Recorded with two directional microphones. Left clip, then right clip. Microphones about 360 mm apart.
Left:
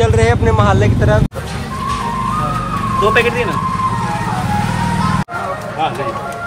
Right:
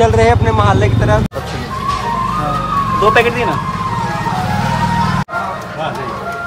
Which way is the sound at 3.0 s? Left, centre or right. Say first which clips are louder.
Right 1 dB; right.